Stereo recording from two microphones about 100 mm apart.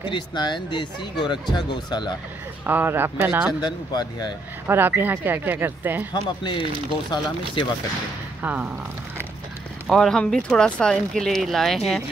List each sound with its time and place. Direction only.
0.0 s speech: 50° left (ahead or behind)
2.6 s speech: 20° right (ahead or behind)
3.6 s speech: 45° left (ahead or behind)
4.6 s speech: 20° right (ahead or behind)
6.4 s speech: 50° left (ahead or behind)
8.4 s speech: 15° right (ahead or behind)
9.8 s speech: 5° left (ahead or behind)